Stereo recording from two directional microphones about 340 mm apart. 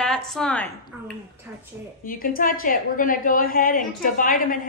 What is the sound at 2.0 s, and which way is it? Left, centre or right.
A woman's voice, left.